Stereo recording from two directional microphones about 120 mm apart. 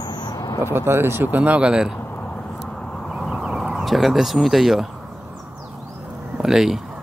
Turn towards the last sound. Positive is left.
turn(degrees=-5)  # may be behind; listen again after turning